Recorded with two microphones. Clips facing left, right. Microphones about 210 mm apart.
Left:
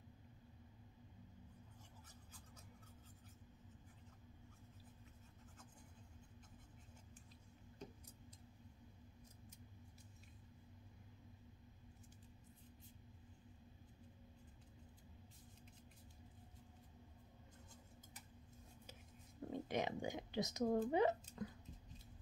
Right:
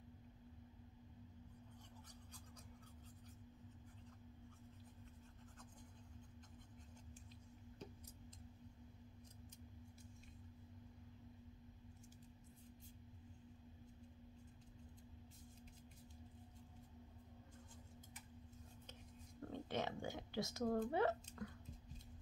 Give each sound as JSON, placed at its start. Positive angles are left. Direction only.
{"t": 19.4, "sound": "a woman's voice", "side_deg": 15}